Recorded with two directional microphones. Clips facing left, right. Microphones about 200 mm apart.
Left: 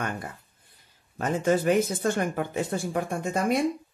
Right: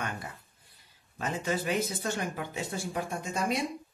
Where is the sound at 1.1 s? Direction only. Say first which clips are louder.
Left 8 dB; 50° left (ahead or behind).